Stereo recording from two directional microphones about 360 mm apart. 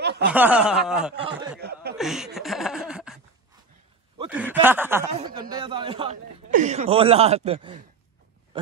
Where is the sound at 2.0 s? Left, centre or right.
Centre.